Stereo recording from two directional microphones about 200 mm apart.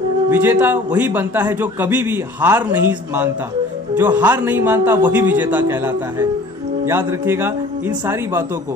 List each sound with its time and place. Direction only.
0.3 s a man's voice: 10° right (ahead or behind)